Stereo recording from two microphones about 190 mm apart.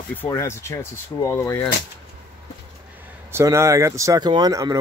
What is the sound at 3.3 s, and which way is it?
Speech, 15° right (ahead or behind).